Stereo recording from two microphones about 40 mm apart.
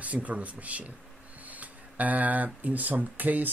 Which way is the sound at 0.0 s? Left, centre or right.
Right.